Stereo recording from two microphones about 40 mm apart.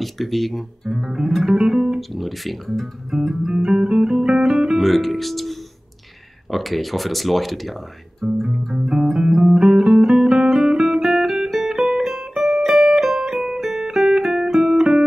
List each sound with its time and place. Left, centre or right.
0.0 s speech: centre
0.9 s music: centre
2.0 s speech: centre
3.1 s music: centre
4.8 s speech: centre
8.3 s music: centre
9.6 s guitar: centre
11.5 s music: centre